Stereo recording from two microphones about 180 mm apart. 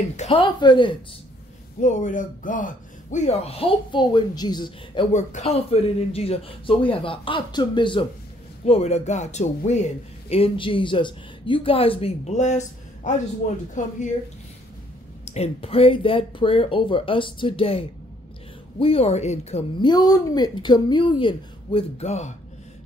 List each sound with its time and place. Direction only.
0.2 s a woman's voice: 30° left (ahead or behind)
1.8 s speech: 45° left (ahead or behind); by 5.0 s 25° left (ahead or behind)
5.1 s speech: 40° left (ahead or behind)
10.3 s speech: 30° left (ahead or behind)
15.3 s speech: 35° left (ahead or behind)
19.8 s a woman's voice: 20° left (ahead or behind); by 22.3 s 40° left (ahead or behind)